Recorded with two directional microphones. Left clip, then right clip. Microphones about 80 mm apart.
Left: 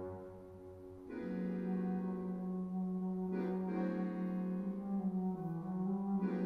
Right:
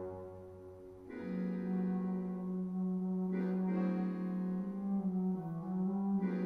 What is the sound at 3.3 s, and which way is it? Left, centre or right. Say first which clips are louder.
Music: even; centre.